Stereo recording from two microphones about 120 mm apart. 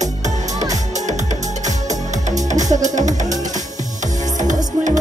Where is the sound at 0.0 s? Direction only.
80° right.